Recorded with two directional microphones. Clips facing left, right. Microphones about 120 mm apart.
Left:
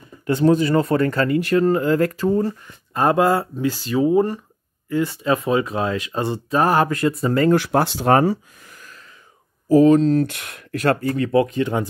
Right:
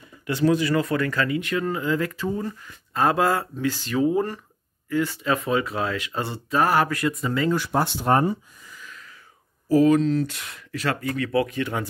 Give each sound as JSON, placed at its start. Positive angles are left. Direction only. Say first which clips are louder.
{"t": 0.3, "sound": "speech", "louder": "left 4 dB", "side_deg": 40}
{"t": 2.9, "sound": "speech", "louder": "left 4 dB", "side_deg": 20}
{"t": 7.5, "sound": "speech", "louder": "left 6 dB", "side_deg": 80}
{"t": 9.8, "sound": "speech", "louder": "left 4 dB", "side_deg": 30}
{"t": 10.1, "sound": "speech", "louder": "left 5 dB", "side_deg": 55}
{"t": 11.0, "sound": "speech", "louder": "left 5 dB", "side_deg": 30}